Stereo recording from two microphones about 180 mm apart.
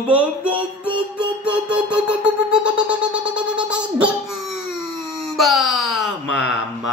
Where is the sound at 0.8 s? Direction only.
25° right (ahead or behind).